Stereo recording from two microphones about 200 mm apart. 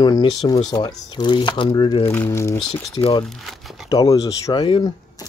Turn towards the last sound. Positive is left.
turn(degrees=15)  # may be behind; listen again after turning